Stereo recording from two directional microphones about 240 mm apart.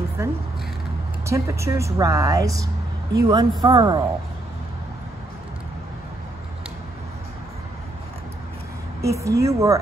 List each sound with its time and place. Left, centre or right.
0.2 s speech: centre
9.0 s speech: centre